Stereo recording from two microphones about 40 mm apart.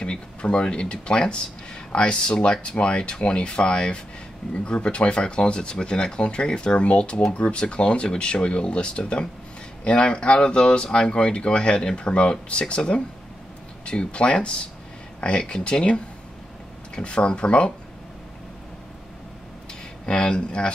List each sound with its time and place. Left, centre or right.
0.0 s speech: left
20.2 s speech: left